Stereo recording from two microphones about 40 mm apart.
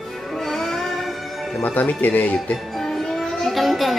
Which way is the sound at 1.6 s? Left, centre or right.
Left.